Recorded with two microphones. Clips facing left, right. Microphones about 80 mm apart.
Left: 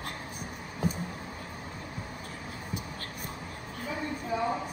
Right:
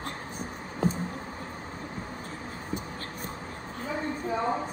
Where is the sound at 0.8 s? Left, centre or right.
Right.